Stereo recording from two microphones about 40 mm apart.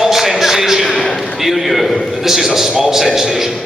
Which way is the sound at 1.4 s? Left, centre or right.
Centre.